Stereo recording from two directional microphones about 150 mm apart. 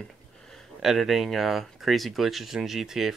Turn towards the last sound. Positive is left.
turn(degrees=-5)  # may be behind; listen again after turning